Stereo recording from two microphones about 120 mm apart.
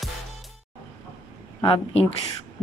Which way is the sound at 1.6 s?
50° left (ahead or behind).